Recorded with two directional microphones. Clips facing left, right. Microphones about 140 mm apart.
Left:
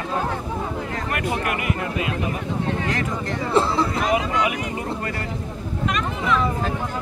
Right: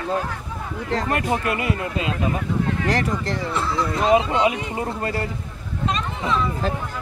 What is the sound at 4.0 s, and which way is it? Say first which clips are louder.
Speech: right 4 dB; 30° right (ahead or behind).